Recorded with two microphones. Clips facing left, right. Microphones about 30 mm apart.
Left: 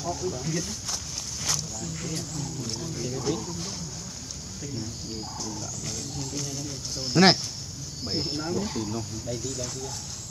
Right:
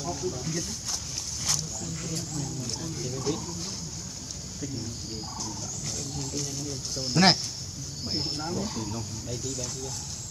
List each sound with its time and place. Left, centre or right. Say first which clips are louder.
0.0 s speech: left 2 dB; centre
5.4 s speech: left 1 dB; centre